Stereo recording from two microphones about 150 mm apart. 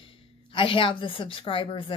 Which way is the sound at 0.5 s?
35° left (ahead or behind).